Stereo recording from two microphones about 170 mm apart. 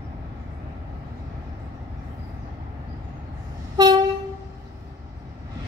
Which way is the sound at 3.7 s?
25° right (ahead or behind).